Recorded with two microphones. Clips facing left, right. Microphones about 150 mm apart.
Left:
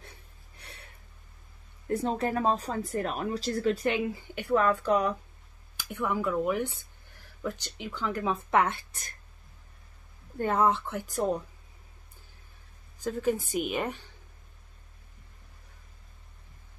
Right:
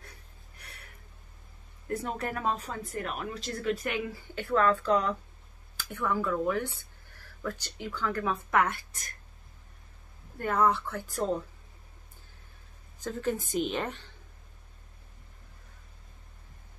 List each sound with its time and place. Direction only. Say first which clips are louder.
0.6 s a sound: left 2 dB; 25° left (ahead or behind)
2.0 s speech: left 6 dB; 25° left (ahead or behind)
3.8 s speech: left 5 dB; 20° left (ahead or behind)
10.4 s speech: left 1 dB; 25° left (ahead or behind)
13.0 s speech: left 3 dB; 10° left (ahead or behind)